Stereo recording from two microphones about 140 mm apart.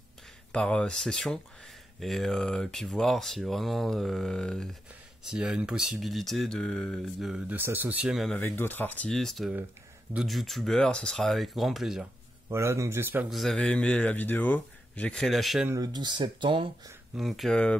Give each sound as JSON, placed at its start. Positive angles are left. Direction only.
{"t": 0.5, "sound": "speech", "side_deg": 10}
{"t": 5.2, "sound": "speech", "side_deg": -5}
{"t": 8.4, "sound": "speech", "side_deg": 15}
{"t": 12.4, "sound": "a man's voice", "side_deg": -20}
{"t": 13.3, "sound": "speech", "side_deg": 0}
{"t": 15.7, "sound": "speech", "side_deg": -30}
{"t": 17.1, "sound": "speech", "side_deg": 0}